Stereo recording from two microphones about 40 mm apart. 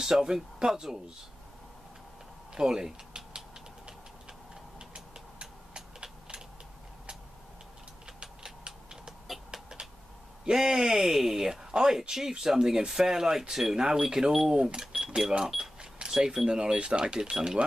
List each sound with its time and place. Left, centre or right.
0.0 s speech: centre
2.5 s speech: centre
4.7 s vehicle: right
9.5 s a sound: centre
10.5 s speech: centre
14.9 s cash register: centre
16.1 s speech: centre